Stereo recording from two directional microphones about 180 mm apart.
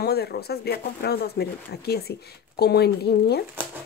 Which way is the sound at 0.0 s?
60° left (ahead or behind).